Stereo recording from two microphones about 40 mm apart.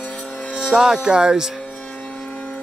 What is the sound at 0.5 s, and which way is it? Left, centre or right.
Speech, centre.